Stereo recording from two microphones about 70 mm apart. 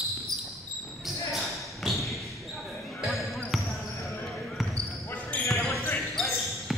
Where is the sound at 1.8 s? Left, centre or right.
Centre.